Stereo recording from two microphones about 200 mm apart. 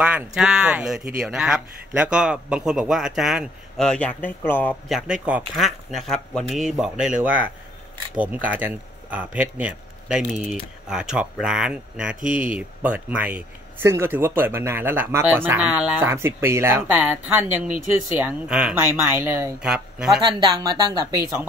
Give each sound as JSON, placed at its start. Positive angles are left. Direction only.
{"t": 0.0, "sound": "speech", "side_deg": -5}
{"t": 4.8, "sound": "speech", "side_deg": 0}
{"t": 8.2, "sound": "speech", "side_deg": -5}
{"t": 20.2, "sound": "speech", "side_deg": -20}